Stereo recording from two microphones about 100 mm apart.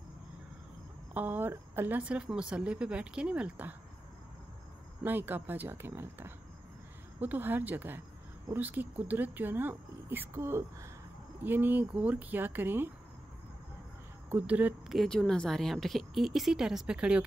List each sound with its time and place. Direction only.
1.1 s speech: 20° right (ahead or behind)
5.0 s speech: 20° right (ahead or behind)
14.3 s speech: 15° right (ahead or behind)
14.9 s a woman's voice: 5° left (ahead or behind)